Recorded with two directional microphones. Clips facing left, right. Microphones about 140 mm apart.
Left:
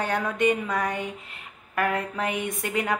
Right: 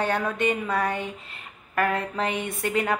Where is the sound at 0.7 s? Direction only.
15° left (ahead or behind).